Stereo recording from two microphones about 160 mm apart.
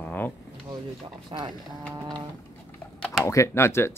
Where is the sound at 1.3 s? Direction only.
35° right (ahead or behind).